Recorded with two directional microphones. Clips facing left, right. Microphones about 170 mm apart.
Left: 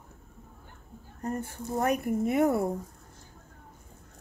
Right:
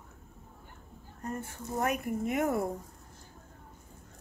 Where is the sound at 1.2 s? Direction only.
35° left (ahead or behind).